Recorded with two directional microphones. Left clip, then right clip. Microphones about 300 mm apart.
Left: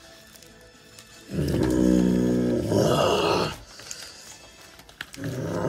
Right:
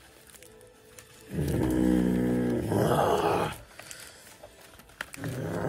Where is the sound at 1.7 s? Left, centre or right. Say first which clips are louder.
Left 4 dB; centre.